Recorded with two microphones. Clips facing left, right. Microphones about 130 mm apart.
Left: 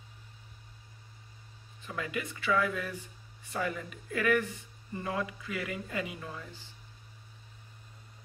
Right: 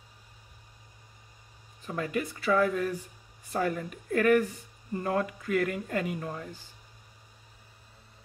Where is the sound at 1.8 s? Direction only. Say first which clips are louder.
Right 5 dB; 40° right (ahead or behind).